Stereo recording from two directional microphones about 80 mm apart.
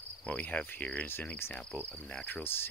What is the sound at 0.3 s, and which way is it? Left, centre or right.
Cricket, centre.